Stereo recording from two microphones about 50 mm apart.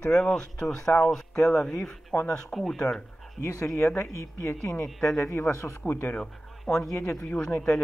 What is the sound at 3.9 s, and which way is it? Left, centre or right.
Speech, left.